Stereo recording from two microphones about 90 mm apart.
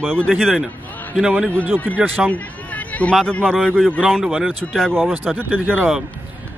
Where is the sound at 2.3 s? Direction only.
15° left (ahead or behind).